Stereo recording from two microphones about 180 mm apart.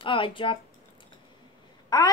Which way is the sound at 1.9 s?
20° left (ahead or behind).